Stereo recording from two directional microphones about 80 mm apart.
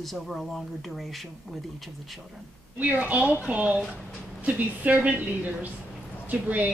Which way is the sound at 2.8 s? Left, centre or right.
Centre.